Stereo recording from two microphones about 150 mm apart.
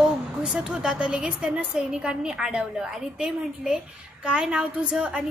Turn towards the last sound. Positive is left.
turn(degrees=-5)  # may be behind; listen again after turning